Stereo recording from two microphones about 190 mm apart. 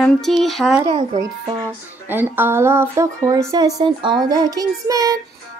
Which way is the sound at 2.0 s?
10° right (ahead or behind).